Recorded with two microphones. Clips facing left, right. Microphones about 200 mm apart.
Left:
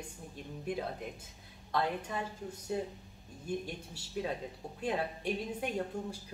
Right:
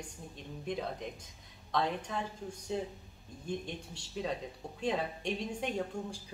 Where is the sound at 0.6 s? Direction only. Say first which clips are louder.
Even; 5° left (ahead or behind).